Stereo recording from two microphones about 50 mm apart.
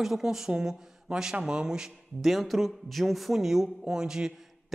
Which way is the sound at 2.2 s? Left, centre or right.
Centre.